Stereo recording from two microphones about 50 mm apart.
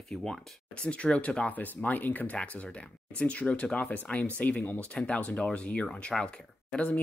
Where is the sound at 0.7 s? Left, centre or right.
Left.